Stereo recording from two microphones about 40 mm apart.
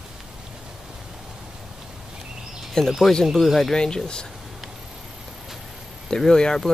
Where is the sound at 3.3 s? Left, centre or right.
Centre.